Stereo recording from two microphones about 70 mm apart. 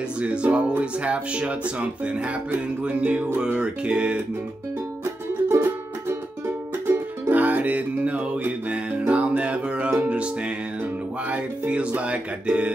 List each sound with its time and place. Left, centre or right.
0.2 s speech: centre
5.5 s music: right; by 10.5 s centre
11.2 s speech: centre